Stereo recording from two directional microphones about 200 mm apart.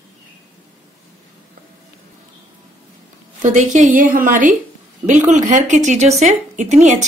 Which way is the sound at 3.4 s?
40° right (ahead or behind).